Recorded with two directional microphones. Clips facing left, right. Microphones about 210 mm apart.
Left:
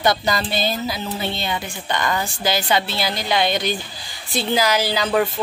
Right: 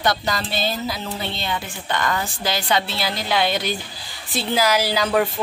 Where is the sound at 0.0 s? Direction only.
Centre (ahead or behind).